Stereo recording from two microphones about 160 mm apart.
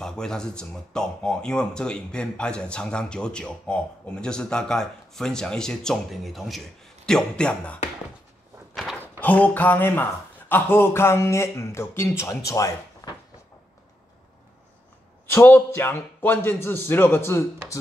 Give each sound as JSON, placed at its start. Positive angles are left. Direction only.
{"t": 0.0, "sound": "speech", "side_deg": 5}
{"t": 9.2, "sound": "speech", "side_deg": 10}
{"t": 15.2, "sound": "speech", "side_deg": 15}